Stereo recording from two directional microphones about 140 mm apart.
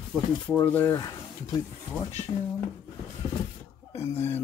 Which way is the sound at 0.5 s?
15° left (ahead or behind).